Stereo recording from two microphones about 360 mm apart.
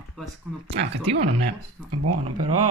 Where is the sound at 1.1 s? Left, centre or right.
Right.